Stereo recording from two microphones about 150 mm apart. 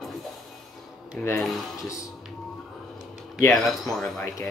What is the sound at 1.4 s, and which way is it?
Speech, centre (ahead or behind).